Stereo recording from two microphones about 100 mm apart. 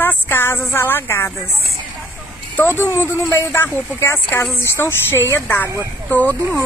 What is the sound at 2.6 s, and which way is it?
A woman's voice, 25° left (ahead or behind).